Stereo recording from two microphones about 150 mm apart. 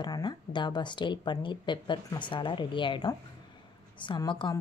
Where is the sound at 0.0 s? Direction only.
30° left (ahead or behind).